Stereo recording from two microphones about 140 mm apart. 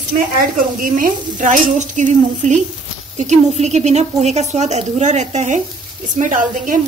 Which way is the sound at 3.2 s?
55° right (ahead or behind).